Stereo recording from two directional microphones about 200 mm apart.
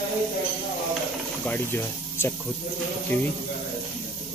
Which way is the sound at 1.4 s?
10° left (ahead or behind).